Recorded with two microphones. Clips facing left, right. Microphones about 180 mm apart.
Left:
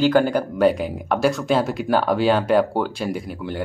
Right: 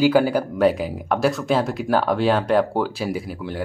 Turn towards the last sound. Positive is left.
turn(degrees=0)  # may be behind; listen again after turning